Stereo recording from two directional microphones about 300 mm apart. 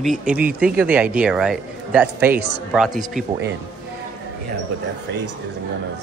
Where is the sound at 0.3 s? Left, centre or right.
Centre.